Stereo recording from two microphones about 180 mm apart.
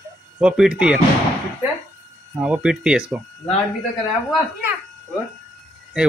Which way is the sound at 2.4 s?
5° right (ahead or behind).